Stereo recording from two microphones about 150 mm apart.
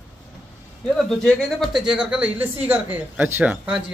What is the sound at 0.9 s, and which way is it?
Speech, 5° left (ahead or behind).